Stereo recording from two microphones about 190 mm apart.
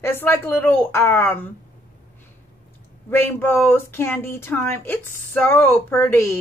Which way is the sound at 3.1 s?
10° left (ahead or behind).